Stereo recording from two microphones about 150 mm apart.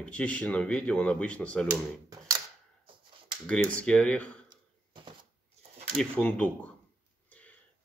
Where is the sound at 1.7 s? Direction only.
20° right (ahead or behind).